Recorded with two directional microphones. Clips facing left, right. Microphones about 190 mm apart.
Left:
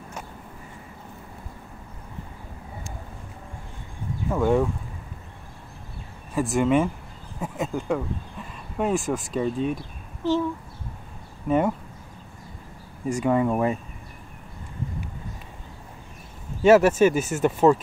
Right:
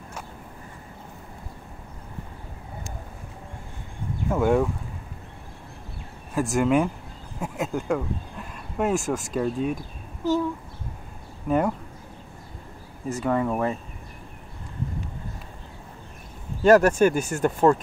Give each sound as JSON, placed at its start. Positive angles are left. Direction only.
{"t": 4.3, "sound": "speech", "side_deg": -5}
{"t": 6.3, "sound": "speech", "side_deg": 0}
{"t": 9.8, "sound": "a sound", "side_deg": -45}
{"t": 11.4, "sound": "speech", "side_deg": 0}
{"t": 13.1, "sound": "speech", "side_deg": 10}
{"t": 16.6, "sound": "speech", "side_deg": 5}